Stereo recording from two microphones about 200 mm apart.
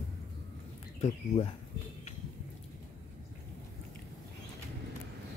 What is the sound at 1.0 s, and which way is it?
Speech, 30° left (ahead or behind).